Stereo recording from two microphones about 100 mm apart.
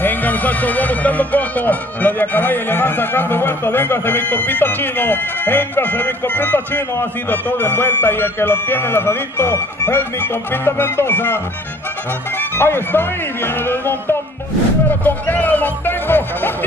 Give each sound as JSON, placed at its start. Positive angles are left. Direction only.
{"t": 0.0, "sound": "speech", "side_deg": 20}